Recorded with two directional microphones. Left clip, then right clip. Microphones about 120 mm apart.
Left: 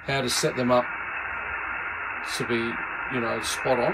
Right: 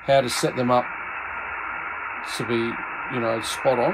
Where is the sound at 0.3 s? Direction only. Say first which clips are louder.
Right 1 dB; 35° right (ahead or behind).